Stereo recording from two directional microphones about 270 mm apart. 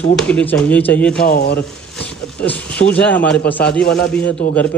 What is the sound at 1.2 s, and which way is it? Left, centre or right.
Speech, left.